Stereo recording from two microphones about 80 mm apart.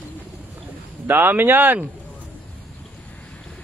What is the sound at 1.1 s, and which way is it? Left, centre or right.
Speech, right.